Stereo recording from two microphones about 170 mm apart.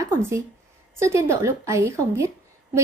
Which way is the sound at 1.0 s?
15° right (ahead or behind).